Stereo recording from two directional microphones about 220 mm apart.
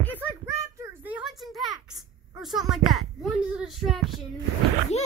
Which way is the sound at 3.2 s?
Centre (ahead or behind).